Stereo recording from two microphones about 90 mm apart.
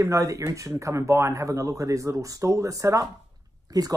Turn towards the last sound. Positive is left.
turn(degrees=-45)  # may be behind; listen again after turning